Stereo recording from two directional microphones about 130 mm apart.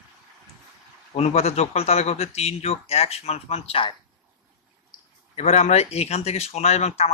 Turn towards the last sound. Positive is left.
turn(degrees=55)  # may be behind; listen again after turning